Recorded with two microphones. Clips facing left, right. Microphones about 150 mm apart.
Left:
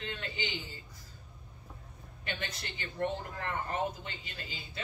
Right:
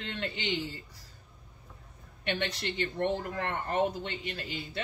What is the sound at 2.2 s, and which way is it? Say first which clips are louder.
Speech: right 8 dB; 70° right (ahead or behind).